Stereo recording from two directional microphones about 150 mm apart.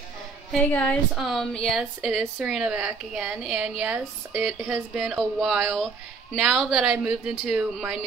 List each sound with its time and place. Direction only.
0.5 s a woman's voice: 5° left (ahead or behind)
1.1 s a woman's voice: centre (ahead or behind)